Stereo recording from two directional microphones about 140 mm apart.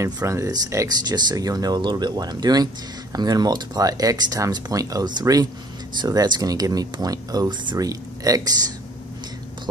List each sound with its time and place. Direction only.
0.0 s speech: 20° right (ahead or behind)